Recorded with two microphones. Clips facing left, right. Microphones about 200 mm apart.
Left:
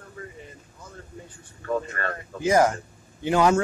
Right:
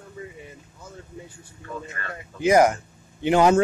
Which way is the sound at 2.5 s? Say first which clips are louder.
Right 3 dB; 15° right (ahead or behind).